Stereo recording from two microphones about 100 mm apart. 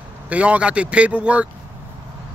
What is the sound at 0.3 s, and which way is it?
Speech, 15° right (ahead or behind).